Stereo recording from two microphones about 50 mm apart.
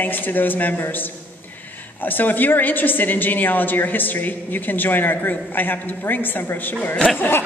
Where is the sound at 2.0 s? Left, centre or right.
Left.